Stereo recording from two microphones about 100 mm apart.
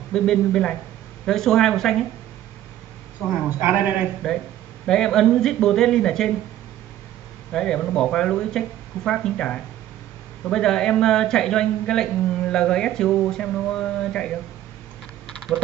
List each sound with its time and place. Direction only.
0.1 s a man's voice: 5° left (ahead or behind)
3.4 s a man's voice: 15° right (ahead or behind)
4.2 s a man's voice: 5° left (ahead or behind)
7.5 s speech: 5° left (ahead or behind)